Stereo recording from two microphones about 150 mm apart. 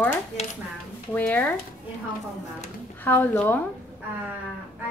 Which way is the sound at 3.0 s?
15° left (ahead or behind).